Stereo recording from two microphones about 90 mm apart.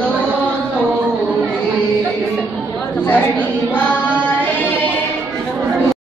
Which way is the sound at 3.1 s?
20° left (ahead or behind).